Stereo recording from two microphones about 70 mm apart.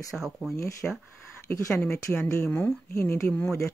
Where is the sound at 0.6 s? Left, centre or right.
Left.